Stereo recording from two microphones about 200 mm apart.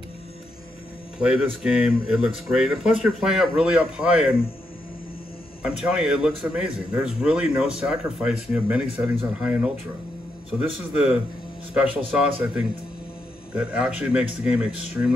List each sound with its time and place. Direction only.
1.2 s a man's voice: 5° right (ahead or behind)
5.6 s a man's voice: 5° right (ahead or behind)
11.7 s a man's voice: 5° right (ahead or behind)